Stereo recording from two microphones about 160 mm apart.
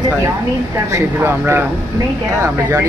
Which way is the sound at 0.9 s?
15° right (ahead or behind).